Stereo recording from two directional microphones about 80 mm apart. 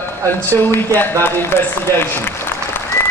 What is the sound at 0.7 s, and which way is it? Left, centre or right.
Speech, left.